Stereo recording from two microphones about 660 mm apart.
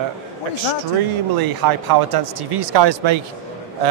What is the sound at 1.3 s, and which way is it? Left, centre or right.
Speech, right.